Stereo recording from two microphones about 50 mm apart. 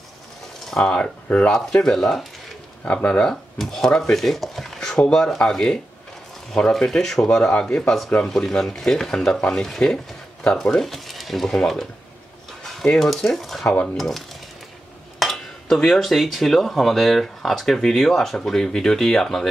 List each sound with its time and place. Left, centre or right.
0.7 s speech: centre
1.5 s speech: centre
3.0 s speech: left
3.5 s speech: centre
8.3 s speech: centre